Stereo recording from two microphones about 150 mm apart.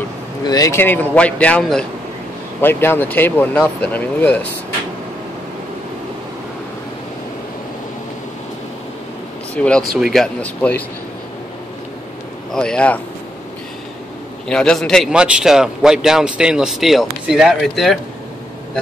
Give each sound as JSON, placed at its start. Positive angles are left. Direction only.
{"t": 0.4, "sound": "speech", "side_deg": 25}
{"t": 0.7, "sound": "speech", "side_deg": 10}
{"t": 9.6, "sound": "speech", "side_deg": 5}
{"t": 12.5, "sound": "speech", "side_deg": 5}
{"t": 14.5, "sound": "a man's voice", "side_deg": 5}